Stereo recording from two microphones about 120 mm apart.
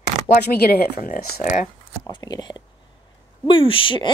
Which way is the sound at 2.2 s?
35° left (ahead or behind).